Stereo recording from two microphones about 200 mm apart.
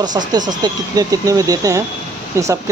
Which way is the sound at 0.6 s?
20° right (ahead or behind).